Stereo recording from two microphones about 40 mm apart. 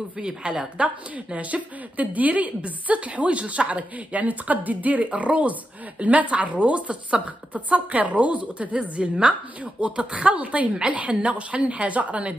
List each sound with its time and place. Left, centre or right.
0.2 s a woman's voice: right
0.8 s a woman's voice: right
9.0 s a woman's voice: centre; by 12.4 s right